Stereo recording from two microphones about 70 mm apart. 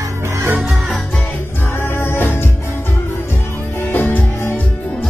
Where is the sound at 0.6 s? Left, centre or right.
Centre.